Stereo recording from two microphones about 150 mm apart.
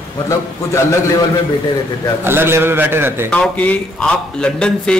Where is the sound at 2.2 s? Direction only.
15° right (ahead or behind).